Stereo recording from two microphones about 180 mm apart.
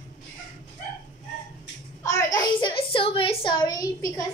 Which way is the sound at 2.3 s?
25° left (ahead or behind).